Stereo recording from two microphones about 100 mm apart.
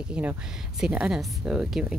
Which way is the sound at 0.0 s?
15° right (ahead or behind).